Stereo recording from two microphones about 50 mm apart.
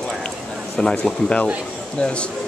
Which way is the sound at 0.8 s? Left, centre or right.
Centre.